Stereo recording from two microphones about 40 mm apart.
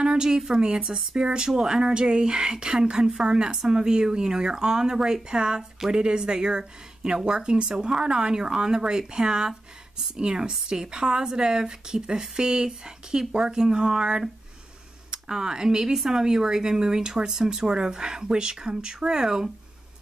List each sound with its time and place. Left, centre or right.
0.0 s a woman's voice: centre